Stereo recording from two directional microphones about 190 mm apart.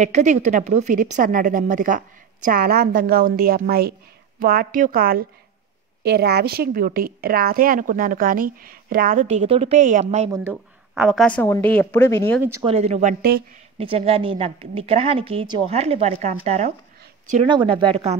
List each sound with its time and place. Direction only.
0.0 s a woman's voice: 40° right (ahead or behind)
10.3 s a woman's voice: 10° right (ahead or behind); by 12.4 s 15° left (ahead or behind)
12.6 s a woman's voice: 35° right (ahead or behind)
17.5 s speech: 25° right (ahead or behind)